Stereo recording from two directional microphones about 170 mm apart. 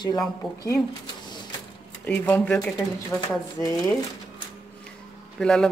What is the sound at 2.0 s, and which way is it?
Speech, 10° left (ahead or behind).